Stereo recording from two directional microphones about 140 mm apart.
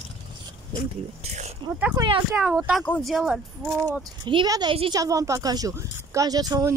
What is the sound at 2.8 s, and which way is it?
Speech, 5° left (ahead or behind).